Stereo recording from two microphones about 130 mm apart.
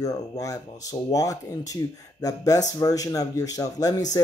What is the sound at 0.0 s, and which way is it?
A man's voice, 25° left (ahead or behind).